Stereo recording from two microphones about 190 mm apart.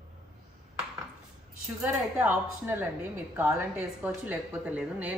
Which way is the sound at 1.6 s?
5° right (ahead or behind).